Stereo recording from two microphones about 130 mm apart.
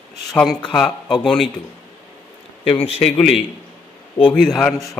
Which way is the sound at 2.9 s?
50° left (ahead or behind).